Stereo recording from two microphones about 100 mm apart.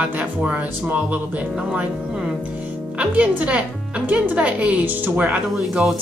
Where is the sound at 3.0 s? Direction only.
10° right (ahead or behind).